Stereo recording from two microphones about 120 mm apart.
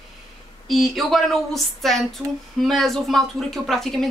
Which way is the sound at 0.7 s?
Centre (ahead or behind).